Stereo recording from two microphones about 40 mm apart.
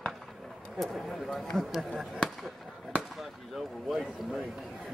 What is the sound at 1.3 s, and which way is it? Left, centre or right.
Speech, centre.